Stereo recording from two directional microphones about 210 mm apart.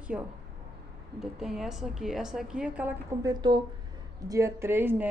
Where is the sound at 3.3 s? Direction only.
20° right (ahead or behind).